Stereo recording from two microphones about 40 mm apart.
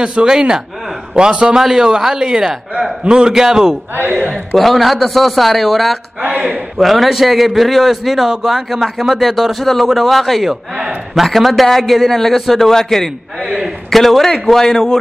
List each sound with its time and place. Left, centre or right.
0.0 s speech: centre
1.6 s speech: centre
3.9 s a man's voice: right
4.6 s a man's voice: centre